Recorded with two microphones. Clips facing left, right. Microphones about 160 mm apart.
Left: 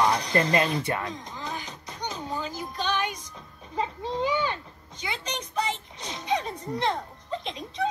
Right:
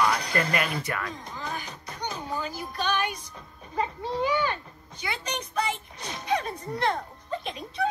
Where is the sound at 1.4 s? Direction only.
15° left (ahead or behind).